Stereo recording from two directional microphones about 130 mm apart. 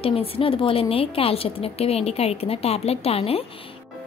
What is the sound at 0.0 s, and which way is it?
Speech, 45° left (ahead or behind).